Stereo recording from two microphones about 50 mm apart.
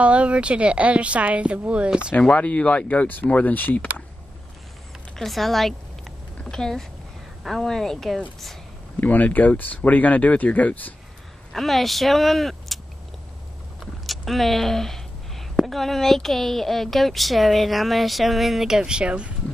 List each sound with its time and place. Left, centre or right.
0.0 s a woman's voice: right
2.3 s speech: left
5.1 s a woman's voice: centre
9.0 s speech: left
11.5 s speech: centre
14.0 s a sound: centre
15.5 s a woman's voice: centre
18.8 s a woman's voice: centre